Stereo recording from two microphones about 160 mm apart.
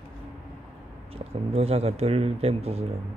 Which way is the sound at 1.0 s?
35° right (ahead or behind).